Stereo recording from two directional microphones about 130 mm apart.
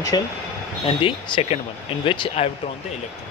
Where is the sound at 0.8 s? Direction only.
45° left (ahead or behind).